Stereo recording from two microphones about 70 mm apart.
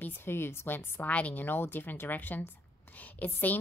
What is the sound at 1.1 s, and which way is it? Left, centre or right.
A woman's voice, centre.